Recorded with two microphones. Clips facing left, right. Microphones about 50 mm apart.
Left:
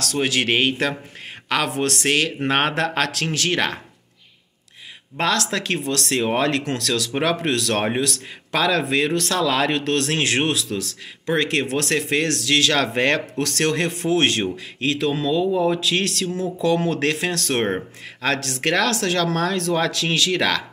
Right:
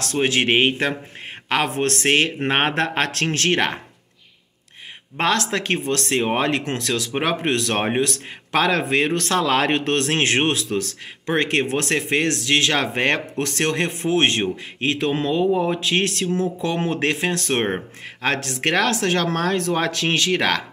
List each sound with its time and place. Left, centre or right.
0.0 s a man's voice: right
5.1 s a man's voice: right